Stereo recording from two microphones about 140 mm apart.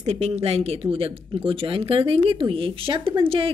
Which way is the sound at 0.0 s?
50° right (ahead or behind).